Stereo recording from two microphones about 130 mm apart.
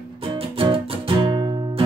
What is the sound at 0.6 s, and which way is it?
Music, 40° right (ahead or behind).